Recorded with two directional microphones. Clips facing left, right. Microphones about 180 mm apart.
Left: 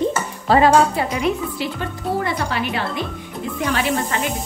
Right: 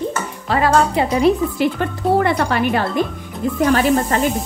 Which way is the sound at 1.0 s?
20° right (ahead or behind).